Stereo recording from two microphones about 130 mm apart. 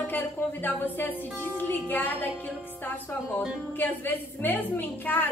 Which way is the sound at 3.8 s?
15° left (ahead or behind).